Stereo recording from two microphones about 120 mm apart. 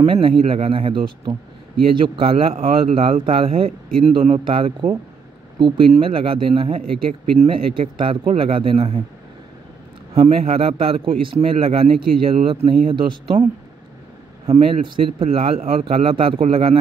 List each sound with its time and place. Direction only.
0.0 s speech: 45° right (ahead or behind)
10.1 s speech: 55° right (ahead or behind)
14.4 s speech: 50° right (ahead or behind)